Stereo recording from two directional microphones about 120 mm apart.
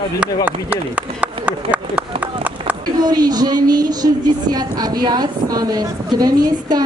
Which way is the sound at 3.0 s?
35° right (ahead or behind).